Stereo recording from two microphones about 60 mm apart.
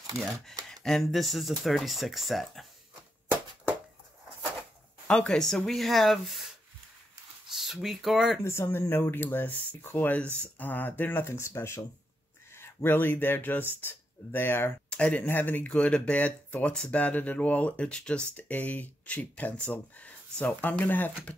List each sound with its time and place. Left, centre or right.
0.7 s speech: centre
5.0 s a sound: centre
5.3 s speech: centre
7.4 s speech: centre
8.6 s speech: left
10.2 s speech: right
10.6 s speech: left
12.5 s speech: left
14.9 s speech: centre
15.2 s speech: left